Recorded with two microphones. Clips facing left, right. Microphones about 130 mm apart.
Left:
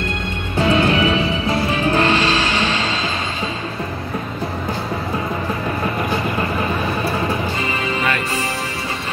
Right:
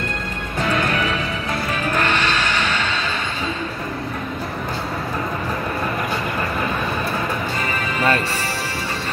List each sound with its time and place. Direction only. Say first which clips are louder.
0.6 s music: left 5 dB; 30° left (ahead or behind)